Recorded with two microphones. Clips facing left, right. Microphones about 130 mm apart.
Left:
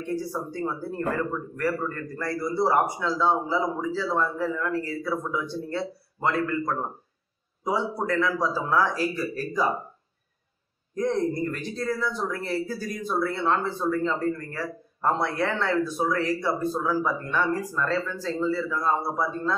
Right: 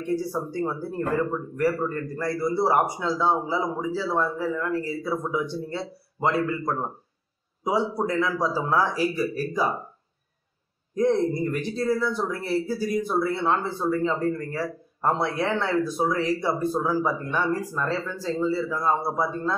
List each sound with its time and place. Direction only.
0.1 s speech: 15° right (ahead or behind)
11.0 s speech: 15° right (ahead or behind)